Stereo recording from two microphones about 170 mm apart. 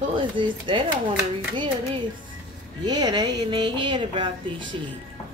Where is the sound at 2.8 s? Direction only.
25° right (ahead or behind).